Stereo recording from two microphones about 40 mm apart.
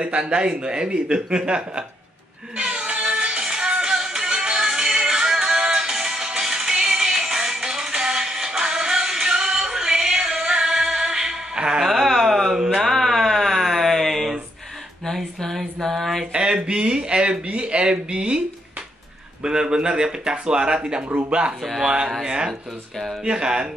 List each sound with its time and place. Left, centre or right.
0.0 s speech: right
2.5 s music: right
11.8 s a sound: centre
15.5 s a sound: centre
16.3 s speech: right
19.4 s speech: right
21.8 s speech: centre